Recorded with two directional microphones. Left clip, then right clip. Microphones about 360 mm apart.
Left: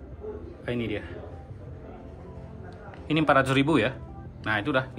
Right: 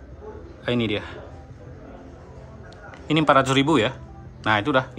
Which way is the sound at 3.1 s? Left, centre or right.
Centre.